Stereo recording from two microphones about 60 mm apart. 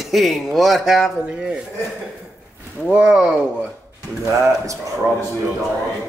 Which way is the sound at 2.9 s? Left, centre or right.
Centre.